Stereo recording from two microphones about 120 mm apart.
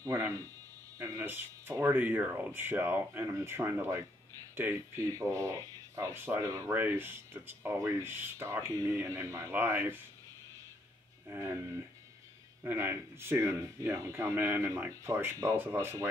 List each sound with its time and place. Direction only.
0.0 s speech: 25° right (ahead or behind)
11.2 s speech: 20° right (ahead or behind)
12.6 s speech: 20° right (ahead or behind)